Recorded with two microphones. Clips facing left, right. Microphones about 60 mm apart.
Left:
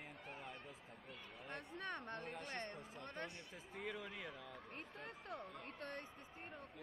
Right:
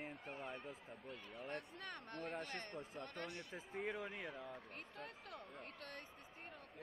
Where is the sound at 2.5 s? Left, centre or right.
Left.